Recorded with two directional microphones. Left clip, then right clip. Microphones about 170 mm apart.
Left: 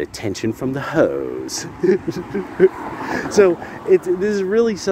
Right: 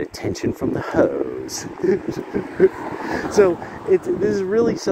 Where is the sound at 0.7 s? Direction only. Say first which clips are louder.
Left 2 dB; 35° left (ahead or behind).